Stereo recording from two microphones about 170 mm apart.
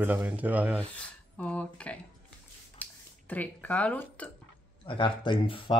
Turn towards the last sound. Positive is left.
turn(degrees=30)  # may be behind; listen again after turning